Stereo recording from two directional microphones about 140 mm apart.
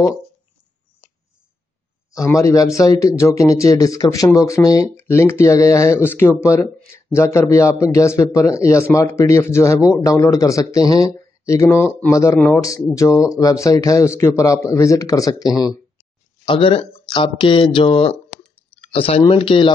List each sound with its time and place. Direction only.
2.1 s a man's voice: 20° left (ahead or behind)
16.4 s speech: 40° left (ahead or behind)